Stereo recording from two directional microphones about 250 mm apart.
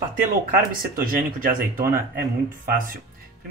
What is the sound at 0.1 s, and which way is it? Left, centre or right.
Speech, right.